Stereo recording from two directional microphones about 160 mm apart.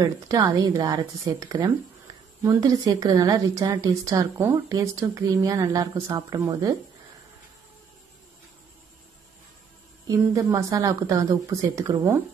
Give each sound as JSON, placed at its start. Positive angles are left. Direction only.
{"t": 0.0, "sound": "speech", "side_deg": -25}
{"t": 10.0, "sound": "speech", "side_deg": -20}